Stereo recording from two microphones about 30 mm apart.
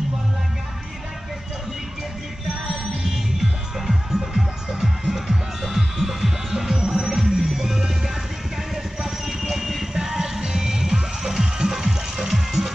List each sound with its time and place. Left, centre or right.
2.4 s music: centre
9.0 s clip-clop: centre
9.9 s music: centre
12.3 s music: centre